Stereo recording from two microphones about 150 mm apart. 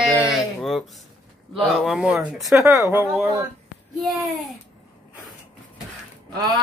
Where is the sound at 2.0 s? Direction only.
5° right (ahead or behind).